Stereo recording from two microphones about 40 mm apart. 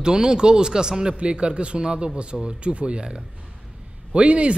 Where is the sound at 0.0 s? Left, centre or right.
Centre.